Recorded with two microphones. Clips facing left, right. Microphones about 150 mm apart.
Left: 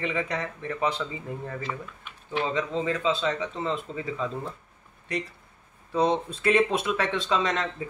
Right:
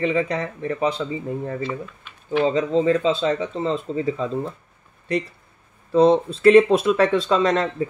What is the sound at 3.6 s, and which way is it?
Speech, 30° right (ahead or behind).